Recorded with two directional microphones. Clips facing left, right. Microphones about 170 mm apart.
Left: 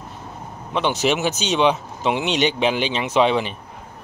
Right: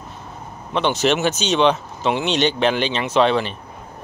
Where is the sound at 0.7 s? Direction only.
10° left (ahead or behind).